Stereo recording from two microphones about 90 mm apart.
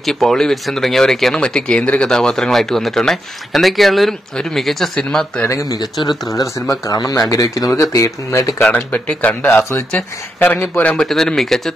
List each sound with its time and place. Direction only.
0.0 s speech: 5° left (ahead or behind)
5.5 s speech: 40° left (ahead or behind)
8.7 s speech: 15° left (ahead or behind)